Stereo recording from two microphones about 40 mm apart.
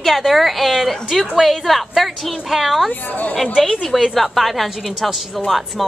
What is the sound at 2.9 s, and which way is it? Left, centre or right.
Speech, left.